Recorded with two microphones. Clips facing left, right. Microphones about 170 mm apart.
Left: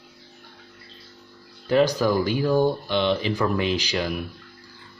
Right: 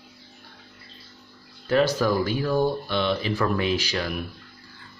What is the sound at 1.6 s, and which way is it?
Speech, 15° left (ahead or behind).